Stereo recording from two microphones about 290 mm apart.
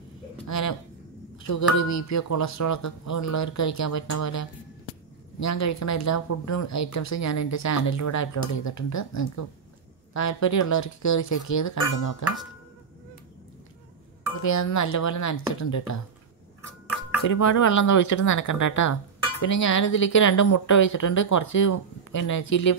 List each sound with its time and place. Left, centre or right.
0.5 s speech: left
14.4 s speech: left
17.2 s speech: left